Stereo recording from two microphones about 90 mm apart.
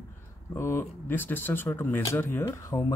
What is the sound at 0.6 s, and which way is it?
Speech, 25° left (ahead or behind).